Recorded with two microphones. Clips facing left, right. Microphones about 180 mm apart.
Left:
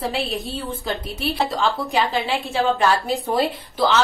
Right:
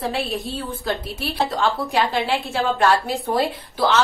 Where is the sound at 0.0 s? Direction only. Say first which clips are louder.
Even; centre (ahead or behind).